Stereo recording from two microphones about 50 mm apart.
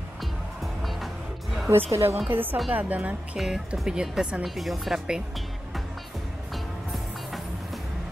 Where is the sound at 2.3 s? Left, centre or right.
Right.